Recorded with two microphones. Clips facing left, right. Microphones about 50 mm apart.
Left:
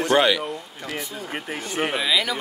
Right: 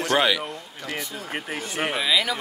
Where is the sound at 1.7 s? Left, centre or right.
Centre.